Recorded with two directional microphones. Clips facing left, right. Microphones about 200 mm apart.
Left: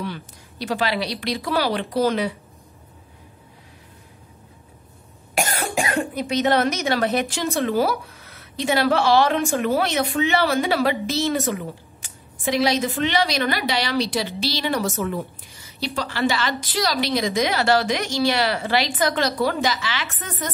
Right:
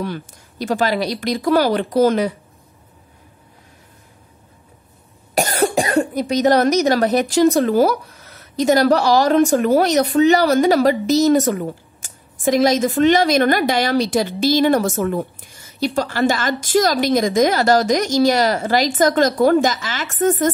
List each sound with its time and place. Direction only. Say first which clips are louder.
0.0 s a woman's voice: right 5 dB; 45° right (ahead or behind)
5.3 s a woman's voice: right 7 dB; 40° right (ahead or behind)